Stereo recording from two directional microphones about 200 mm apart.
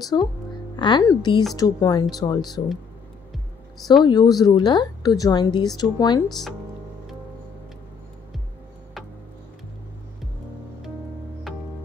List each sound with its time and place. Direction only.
0.1 s a woman's voice: 20° left (ahead or behind)
4.0 s a woman's voice: 20° left (ahead or behind)
11.5 s music: centre (ahead or behind)